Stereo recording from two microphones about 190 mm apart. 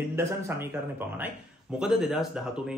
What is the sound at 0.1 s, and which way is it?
Speech, 15° right (ahead or behind).